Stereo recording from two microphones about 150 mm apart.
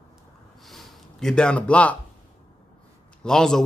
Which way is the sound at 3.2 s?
5° left (ahead or behind).